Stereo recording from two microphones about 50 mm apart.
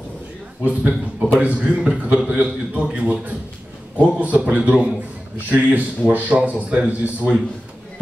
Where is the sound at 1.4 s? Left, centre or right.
Right.